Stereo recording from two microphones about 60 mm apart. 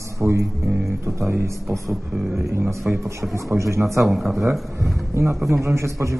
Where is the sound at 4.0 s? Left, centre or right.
Centre.